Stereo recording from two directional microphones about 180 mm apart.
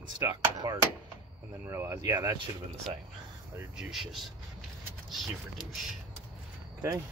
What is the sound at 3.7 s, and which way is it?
Speech, centre (ahead or behind).